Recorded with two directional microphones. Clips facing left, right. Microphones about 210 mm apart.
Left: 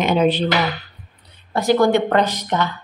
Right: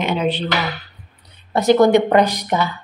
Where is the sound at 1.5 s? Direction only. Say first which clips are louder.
Right 3 dB; 20° right (ahead or behind).